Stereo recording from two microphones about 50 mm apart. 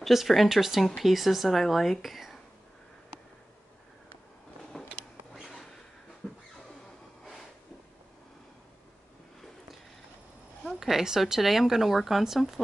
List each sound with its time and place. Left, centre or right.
0.0 s speech: centre
4.7 s a sound: centre
10.8 s speech: centre